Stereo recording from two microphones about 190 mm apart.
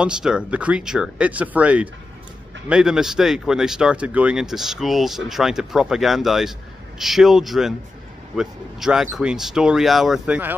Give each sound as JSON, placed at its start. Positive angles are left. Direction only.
{"t": 0.0, "sound": "speech", "side_deg": -5}